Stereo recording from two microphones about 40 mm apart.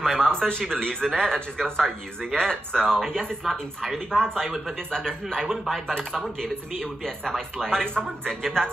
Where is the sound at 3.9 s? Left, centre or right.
Centre.